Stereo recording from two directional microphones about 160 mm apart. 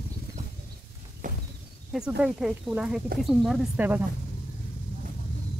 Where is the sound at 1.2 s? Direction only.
55° right (ahead or behind).